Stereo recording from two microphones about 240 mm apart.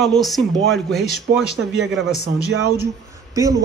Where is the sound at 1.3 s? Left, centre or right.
Right.